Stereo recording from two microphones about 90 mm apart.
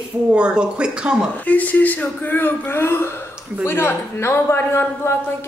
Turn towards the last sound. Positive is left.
turn(degrees=25)  # may be behind; listen again after turning